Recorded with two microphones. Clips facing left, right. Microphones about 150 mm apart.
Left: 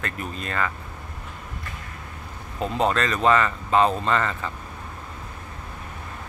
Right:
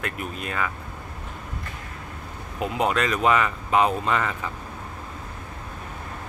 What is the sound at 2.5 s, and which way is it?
Speech, 10° right (ahead or behind).